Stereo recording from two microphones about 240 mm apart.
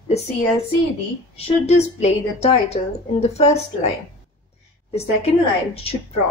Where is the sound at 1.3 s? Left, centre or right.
Left.